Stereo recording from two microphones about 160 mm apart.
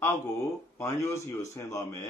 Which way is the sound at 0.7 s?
15° left (ahead or behind).